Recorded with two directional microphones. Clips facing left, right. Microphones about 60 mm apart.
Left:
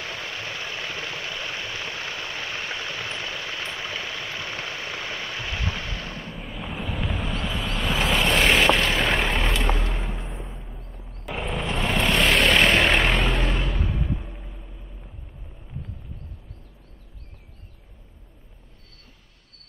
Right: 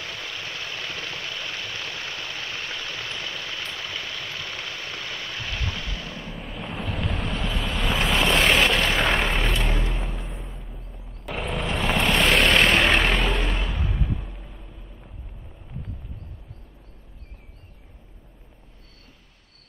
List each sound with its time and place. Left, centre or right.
0.0 s vehicle: centre
6.2 s vehicle: centre
9.9 s a sound: centre
11.2 s vehicle: centre